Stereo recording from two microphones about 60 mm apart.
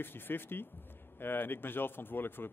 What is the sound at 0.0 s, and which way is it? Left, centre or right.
Speech, left.